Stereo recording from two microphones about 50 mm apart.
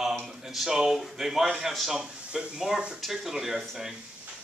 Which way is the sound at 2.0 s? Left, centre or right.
Centre.